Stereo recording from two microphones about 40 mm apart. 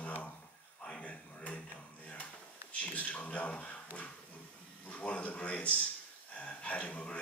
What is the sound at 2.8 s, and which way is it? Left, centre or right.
Speech, left.